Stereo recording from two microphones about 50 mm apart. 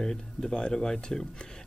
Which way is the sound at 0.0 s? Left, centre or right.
Centre.